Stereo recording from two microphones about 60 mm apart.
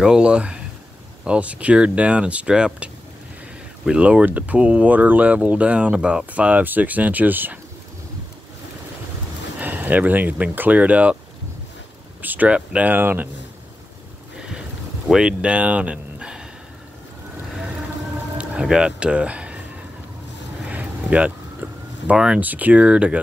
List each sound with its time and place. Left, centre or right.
0.0 s speech: centre
6.3 s speech: right
9.6 s speech: right
12.2 s speech: right
12.9 s speech: right
15.0 s speech: centre
18.6 s speech: centre
20.7 s a sound: right
22.1 s speech: centre
22.4 s speech: right